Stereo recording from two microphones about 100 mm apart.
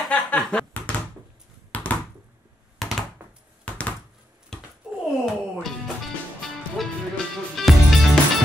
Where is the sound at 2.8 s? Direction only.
Centre (ahead or behind).